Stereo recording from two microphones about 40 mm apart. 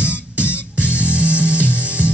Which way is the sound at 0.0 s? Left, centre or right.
Right.